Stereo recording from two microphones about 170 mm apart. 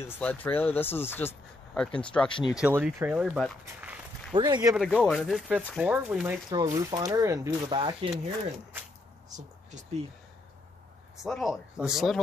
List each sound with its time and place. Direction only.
0.0 s speech: 10° left (ahead or behind)
2.2 s speech: 30° left (ahead or behind)
2.6 s a man's voice: 10° right (ahead or behind)
4.3 s speech: 25° right (ahead or behind)
4.7 s a man's voice: 5° left (ahead or behind)
6.5 s speech: 20° right (ahead or behind)
9.3 s a sound: 45° right (ahead or behind)
11.2 s a man's voice: centre (ahead or behind)